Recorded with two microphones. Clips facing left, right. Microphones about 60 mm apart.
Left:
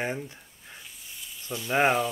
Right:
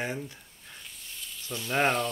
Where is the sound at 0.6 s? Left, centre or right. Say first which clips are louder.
Even; centre.